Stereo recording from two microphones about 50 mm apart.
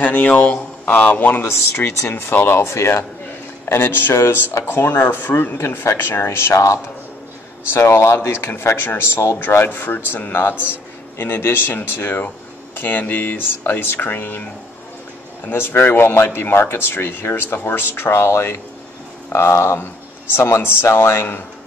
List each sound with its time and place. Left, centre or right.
0.0 s speech: left
1.4 s a man's voice: left
3.6 s a man's voice: left
4.1 s speech: left
4.6 s a man's voice: left
5.3 s a man's voice: left
7.8 s speech: left
8.3 s a man's voice: left
15.4 s a man's voice: left
20.3 s speech: left